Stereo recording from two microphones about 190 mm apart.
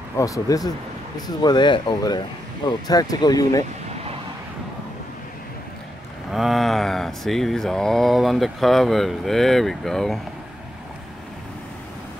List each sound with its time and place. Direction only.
0.2 s speech: 20° left (ahead or behind)
6.3 s speech: centre (ahead or behind)